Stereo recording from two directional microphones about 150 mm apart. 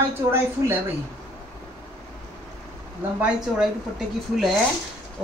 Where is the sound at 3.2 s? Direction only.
5° right (ahead or behind).